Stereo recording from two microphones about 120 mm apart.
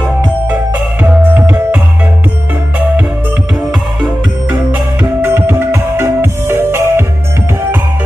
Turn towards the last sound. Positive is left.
turn(degrees=-20)  # may be behind; listen again after turning